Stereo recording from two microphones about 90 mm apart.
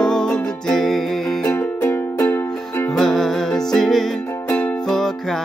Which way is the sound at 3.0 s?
5° left (ahead or behind).